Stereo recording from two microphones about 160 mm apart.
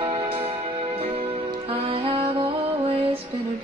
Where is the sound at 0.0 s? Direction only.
35° right (ahead or behind).